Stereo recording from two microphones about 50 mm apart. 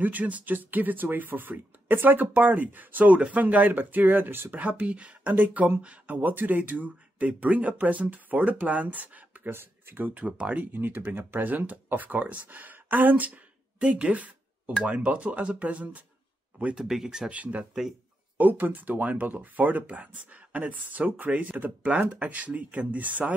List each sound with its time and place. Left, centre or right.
0.0 s speech: right
4.6 s speech: right
9.5 s speech: right
10.2 s speech: right
10.7 s speech: right
16.7 s speech: centre
17.3 s speech: right